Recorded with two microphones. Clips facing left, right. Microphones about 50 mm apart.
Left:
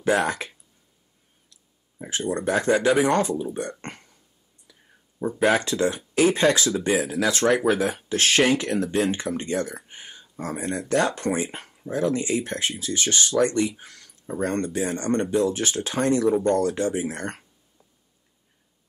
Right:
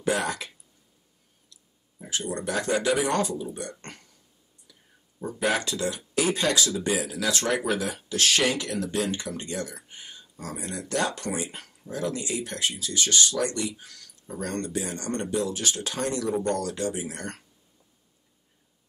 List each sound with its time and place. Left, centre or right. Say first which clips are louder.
0.0 s speech: left 5 dB; left
1.5 s speech: right 1 dB; left
3.8 s burping: left 6 dB; left
5.4 s speech: left 5 dB; left